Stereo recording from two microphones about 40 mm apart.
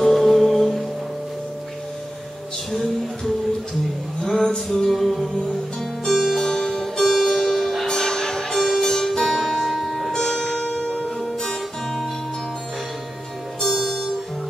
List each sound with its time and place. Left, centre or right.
0.0 s music: centre
2.7 s music: centre
4.5 s music: centre
6.0 s music: centre
13.6 s music: centre